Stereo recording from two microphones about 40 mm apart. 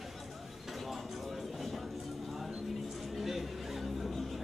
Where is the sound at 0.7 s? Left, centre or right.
Centre.